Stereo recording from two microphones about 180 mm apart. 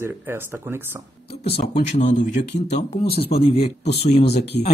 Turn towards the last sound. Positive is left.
turn(degrees=40)  # may be behind; listen again after turning